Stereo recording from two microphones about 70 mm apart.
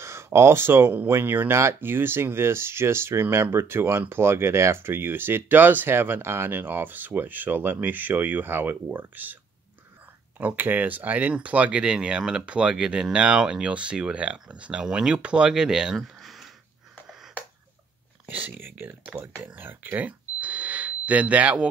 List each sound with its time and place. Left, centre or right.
0.0 s speech: right
10.4 s speech: right; by 16.4 s centre
18.2 s speech: right